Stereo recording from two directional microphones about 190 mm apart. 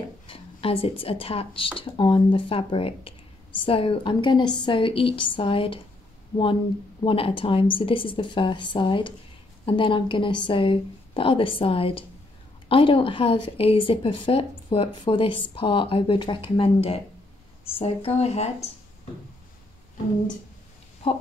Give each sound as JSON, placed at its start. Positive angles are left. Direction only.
{"t": 0.3, "sound": "a woman's voice", "side_deg": 30}
{"t": 7.1, "sound": "a woman's voice", "side_deg": 30}